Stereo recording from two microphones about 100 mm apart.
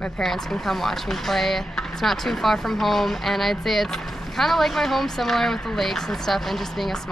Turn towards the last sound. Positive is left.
turn(degrees=5)  # may be behind; listen again after turning